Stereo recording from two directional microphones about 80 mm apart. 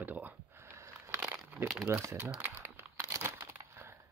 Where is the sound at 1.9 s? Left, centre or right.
Right.